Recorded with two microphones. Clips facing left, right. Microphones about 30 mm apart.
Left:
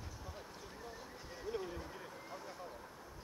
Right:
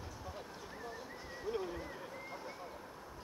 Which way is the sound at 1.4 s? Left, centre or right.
Centre.